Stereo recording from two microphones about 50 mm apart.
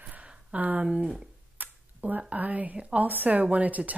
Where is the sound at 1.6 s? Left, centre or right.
Right.